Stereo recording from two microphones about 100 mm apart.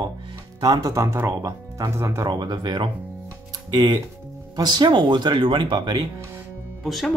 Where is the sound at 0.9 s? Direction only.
30° right (ahead or behind).